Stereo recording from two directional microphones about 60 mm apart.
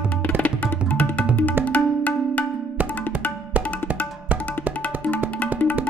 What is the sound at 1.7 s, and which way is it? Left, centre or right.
Music, left.